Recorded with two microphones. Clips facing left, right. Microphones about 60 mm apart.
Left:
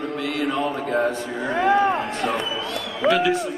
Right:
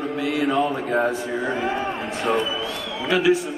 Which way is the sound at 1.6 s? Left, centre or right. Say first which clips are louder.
Left 7 dB; left.